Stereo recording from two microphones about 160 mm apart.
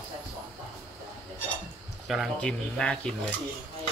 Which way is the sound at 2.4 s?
5° left (ahead or behind).